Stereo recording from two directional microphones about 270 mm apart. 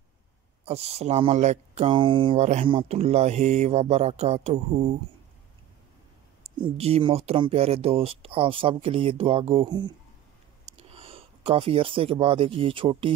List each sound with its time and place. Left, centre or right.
0.7 s speech: right
6.4 s speech: right